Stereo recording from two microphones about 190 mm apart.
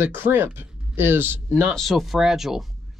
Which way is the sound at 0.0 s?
10° right (ahead or behind).